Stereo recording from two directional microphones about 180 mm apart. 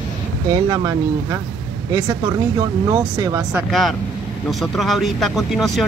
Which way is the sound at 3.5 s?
Centre (ahead or behind).